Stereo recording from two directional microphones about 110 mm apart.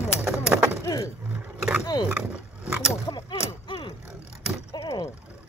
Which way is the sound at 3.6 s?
50° left (ahead or behind).